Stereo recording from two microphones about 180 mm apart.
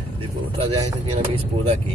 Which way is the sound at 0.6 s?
30° right (ahead or behind).